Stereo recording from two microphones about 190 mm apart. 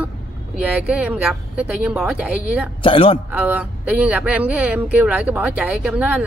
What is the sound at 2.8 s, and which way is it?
Speech, 30° left (ahead or behind).